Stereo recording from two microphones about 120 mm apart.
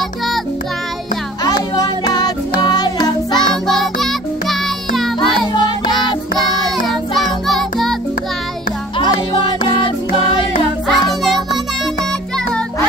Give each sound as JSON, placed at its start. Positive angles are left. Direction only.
{"t": 1.4, "sound": "music", "side_deg": 35}
{"t": 3.3, "sound": "music", "side_deg": 0}
{"t": 10.9, "sound": "music", "side_deg": 0}